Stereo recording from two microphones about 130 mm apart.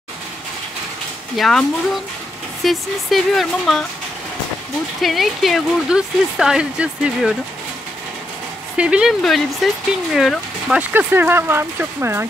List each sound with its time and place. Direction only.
1.3 s speech: centre (ahead or behind)
5.0 s speech: centre (ahead or behind)
8.7 s speech: 10° right (ahead or behind)
10.8 s speech: 15° right (ahead or behind)